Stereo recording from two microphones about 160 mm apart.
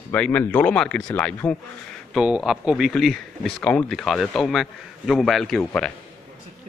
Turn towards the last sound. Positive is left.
turn(degrees=5)  # may be behind; listen again after turning